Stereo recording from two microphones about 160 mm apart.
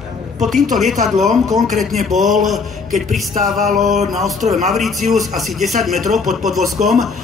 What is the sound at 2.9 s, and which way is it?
Music, 55° right (ahead or behind).